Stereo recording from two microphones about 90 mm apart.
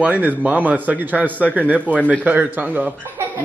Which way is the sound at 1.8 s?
15° left (ahead or behind).